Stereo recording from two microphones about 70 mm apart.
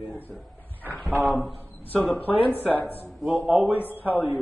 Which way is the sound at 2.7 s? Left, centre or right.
Left.